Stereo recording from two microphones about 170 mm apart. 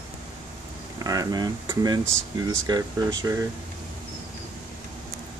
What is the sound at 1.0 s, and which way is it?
Speech, 20° right (ahead or behind).